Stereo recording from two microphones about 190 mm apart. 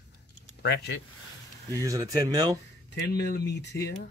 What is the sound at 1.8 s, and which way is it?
Speech, 20° right (ahead or behind).